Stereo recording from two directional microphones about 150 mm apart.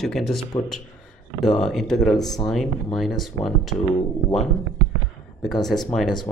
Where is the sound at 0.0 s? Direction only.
Centre (ahead or behind).